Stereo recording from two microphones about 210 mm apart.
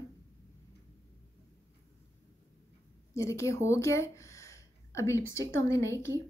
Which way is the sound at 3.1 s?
15° left (ahead or behind).